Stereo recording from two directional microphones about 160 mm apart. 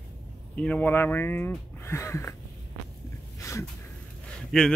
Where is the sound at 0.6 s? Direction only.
10° left (ahead or behind).